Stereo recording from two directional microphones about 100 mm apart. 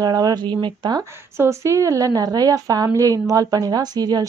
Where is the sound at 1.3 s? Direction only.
30° right (ahead or behind).